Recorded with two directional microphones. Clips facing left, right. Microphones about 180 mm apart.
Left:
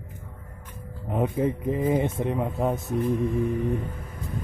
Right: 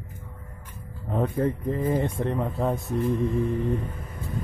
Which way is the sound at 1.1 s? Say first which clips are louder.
Even; 10° left (ahead or behind).